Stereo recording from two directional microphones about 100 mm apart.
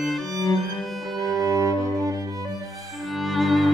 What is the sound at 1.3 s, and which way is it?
Cello, 35° right (ahead or behind).